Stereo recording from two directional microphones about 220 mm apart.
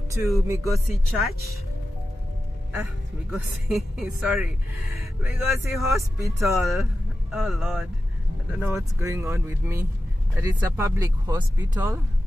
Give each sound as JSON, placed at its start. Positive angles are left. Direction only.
{"t": 0.1, "sound": "speech", "side_deg": -15}
{"t": 2.7, "sound": "speech", "side_deg": -10}
{"t": 7.2, "sound": "speech", "side_deg": 0}